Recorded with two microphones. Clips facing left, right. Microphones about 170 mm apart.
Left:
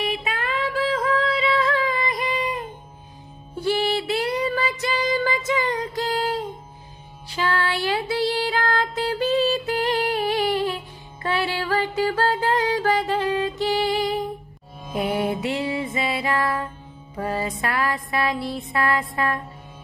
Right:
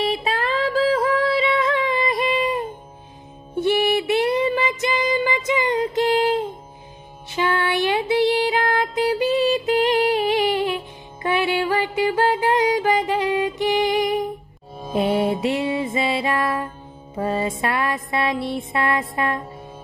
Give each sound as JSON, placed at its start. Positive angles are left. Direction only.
{"t": 0.0, "sound": "music", "side_deg": -30}